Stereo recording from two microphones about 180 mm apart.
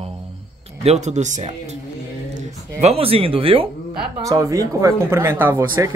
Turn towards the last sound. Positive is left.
turn(degrees=-15)  # may be behind; listen again after turning